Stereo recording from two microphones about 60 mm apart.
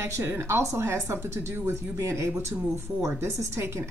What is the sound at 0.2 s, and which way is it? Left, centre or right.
A woman's voice, right.